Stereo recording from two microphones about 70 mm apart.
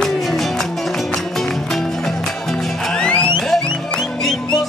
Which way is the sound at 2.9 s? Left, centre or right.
Centre.